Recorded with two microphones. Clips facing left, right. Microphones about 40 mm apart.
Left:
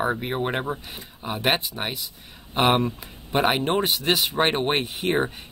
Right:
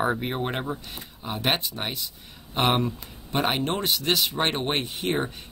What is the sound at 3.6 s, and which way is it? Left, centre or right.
Speech, centre.